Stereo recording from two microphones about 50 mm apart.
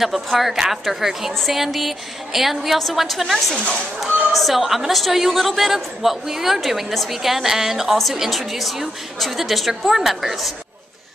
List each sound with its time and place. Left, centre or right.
0.0 s a woman's voice: centre
1.3 s a woman's voice: centre